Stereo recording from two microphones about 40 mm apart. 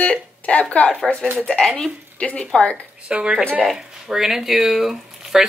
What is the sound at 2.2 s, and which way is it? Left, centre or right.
Speech, left.